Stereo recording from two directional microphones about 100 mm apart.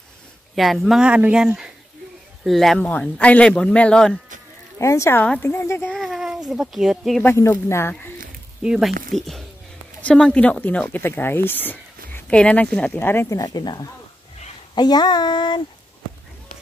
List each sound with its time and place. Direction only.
0.6 s speech: centre (ahead or behind)
2.8 s a man's voice: 15° left (ahead or behind)
4.7 s speech: 30° left (ahead or behind)
5.9 s a sound: centre (ahead or behind)
6.5 s speech: centre (ahead or behind)
7.2 s speech: 25° left (ahead or behind)
8.6 s a man's voice: 5° right (ahead or behind); by 13.3 s 20° left (ahead or behind)
13.3 s a sound: 40° left (ahead or behind)